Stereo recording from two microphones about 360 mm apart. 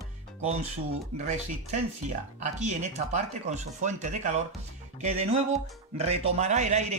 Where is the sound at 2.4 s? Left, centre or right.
Centre.